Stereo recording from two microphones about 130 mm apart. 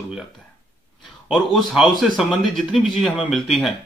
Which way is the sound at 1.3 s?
5° right (ahead or behind).